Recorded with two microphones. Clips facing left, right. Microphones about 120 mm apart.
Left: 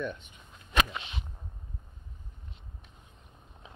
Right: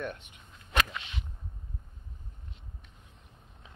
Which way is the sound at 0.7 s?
25° left (ahead or behind).